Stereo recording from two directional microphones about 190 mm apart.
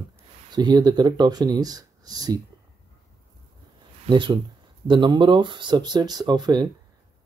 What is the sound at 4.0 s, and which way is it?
Speech, 25° right (ahead or behind).